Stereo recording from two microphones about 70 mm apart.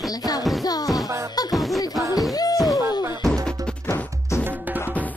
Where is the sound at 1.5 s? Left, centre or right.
Centre.